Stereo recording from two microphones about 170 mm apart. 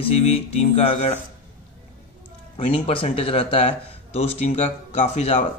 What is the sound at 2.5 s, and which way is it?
Speech, 35° left (ahead or behind).